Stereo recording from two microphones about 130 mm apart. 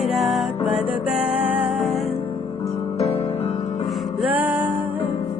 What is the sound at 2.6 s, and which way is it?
Music, 50° left (ahead or behind).